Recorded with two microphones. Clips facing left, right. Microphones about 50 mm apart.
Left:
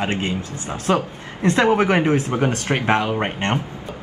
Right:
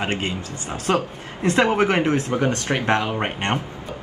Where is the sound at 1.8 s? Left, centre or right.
Centre.